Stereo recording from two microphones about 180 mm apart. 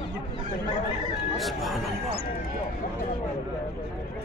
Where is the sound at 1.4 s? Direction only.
Centre (ahead or behind).